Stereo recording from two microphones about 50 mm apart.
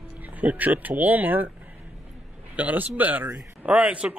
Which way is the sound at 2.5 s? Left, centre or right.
Right.